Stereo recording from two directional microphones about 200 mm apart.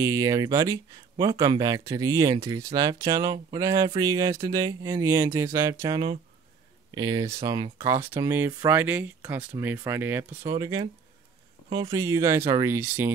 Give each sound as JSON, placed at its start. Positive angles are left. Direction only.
{"t": 0.0, "sound": "speech", "side_deg": -15}